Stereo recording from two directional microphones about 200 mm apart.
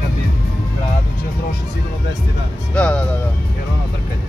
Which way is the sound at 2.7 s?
5° left (ahead or behind).